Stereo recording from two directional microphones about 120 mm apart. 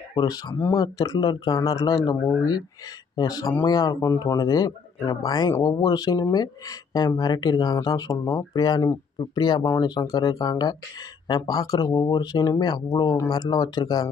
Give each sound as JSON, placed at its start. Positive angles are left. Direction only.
{"t": 0.2, "sound": "speech", "side_deg": 35}
{"t": 3.2, "sound": "speech", "side_deg": 30}
{"t": 8.5, "sound": "speech", "side_deg": 35}